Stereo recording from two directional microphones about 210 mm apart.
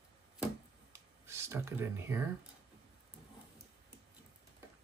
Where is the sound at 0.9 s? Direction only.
10° right (ahead or behind).